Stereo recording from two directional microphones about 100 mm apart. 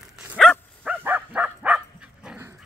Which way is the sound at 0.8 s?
20° right (ahead or behind).